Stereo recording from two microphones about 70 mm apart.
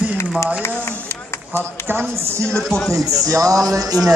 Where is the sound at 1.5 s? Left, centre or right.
Right.